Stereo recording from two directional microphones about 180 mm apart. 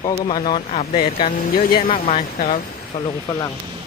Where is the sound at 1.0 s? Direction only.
55° left (ahead or behind).